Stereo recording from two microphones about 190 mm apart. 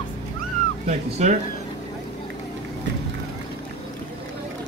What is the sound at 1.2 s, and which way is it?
Speech, 35° right (ahead or behind).